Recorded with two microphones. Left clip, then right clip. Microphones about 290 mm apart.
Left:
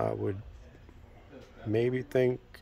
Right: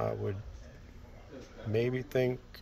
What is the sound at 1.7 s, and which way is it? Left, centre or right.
Speech, centre.